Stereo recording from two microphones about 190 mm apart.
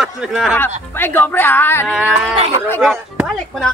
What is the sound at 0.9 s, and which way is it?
Speech, 10° left (ahead or behind).